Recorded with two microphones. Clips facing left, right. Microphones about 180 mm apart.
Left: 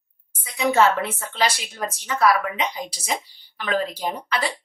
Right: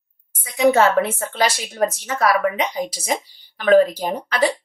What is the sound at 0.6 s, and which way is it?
Speech, 50° right (ahead or behind).